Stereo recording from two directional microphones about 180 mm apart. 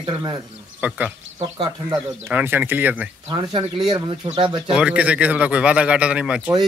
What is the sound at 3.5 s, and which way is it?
A man's voice, 30° right (ahead or behind).